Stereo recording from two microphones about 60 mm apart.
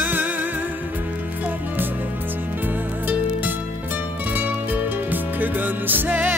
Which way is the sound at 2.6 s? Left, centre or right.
Right.